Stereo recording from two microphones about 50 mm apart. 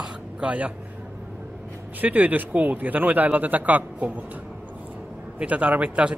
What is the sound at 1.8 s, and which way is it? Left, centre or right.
A man's voice, right.